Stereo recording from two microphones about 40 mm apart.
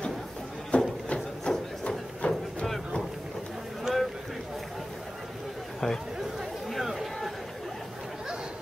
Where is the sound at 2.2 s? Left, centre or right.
Left.